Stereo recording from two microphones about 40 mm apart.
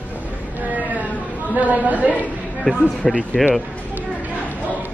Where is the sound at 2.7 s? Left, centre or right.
Left.